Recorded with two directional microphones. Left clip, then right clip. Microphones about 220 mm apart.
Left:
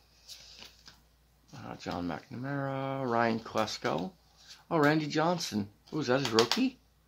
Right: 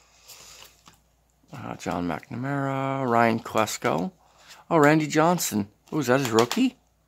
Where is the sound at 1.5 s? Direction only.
45° right (ahead or behind).